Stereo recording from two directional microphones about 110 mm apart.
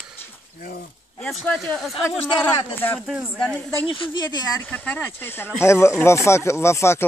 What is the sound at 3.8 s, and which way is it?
Speech, 50° left (ahead or behind).